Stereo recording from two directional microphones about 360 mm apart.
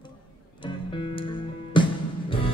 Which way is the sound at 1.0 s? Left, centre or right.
Centre.